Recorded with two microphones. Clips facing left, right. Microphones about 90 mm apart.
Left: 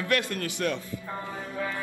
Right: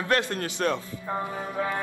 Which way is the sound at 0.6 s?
45° right (ahead or behind).